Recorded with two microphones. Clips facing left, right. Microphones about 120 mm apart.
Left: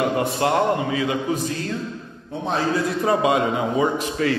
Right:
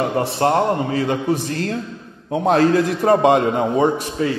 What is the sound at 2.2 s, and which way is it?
Speech, 70° right (ahead or behind).